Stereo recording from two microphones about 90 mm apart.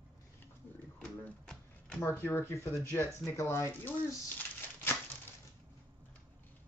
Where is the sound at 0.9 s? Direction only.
10° left (ahead or behind).